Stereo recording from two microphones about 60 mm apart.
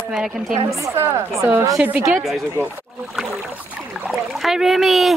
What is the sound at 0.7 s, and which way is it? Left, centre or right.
Speech, right.